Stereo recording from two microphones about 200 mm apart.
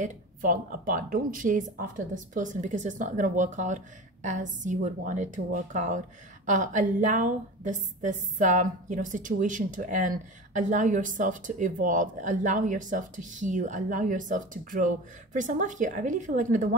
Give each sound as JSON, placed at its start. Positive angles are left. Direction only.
{"t": 0.0, "sound": "a woman's voice", "side_deg": -40}